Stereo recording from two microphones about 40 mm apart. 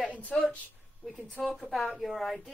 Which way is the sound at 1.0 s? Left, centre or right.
Left.